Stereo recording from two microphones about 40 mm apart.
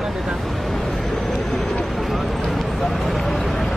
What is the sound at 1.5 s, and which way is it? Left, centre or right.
Vehicle, left.